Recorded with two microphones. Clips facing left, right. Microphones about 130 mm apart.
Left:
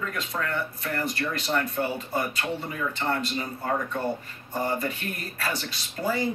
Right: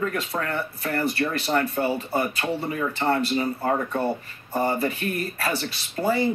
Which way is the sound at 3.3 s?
30° right (ahead or behind).